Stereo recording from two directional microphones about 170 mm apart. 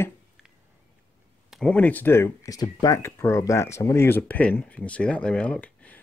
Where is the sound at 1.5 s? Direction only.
5° left (ahead or behind).